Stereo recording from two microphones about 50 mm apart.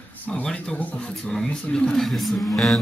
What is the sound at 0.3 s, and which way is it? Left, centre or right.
Speech, centre.